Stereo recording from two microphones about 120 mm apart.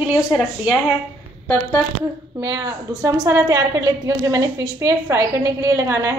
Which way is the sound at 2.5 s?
25° right (ahead or behind).